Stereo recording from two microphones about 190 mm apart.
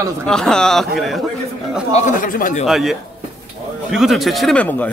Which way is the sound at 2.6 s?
Centre (ahead or behind).